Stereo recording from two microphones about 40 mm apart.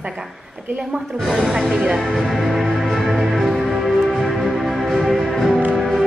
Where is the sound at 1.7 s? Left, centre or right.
Centre.